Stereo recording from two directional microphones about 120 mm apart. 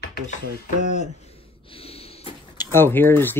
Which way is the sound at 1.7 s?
55° left (ahead or behind).